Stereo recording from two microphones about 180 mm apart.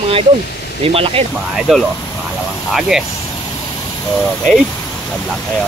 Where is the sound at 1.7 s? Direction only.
5° right (ahead or behind).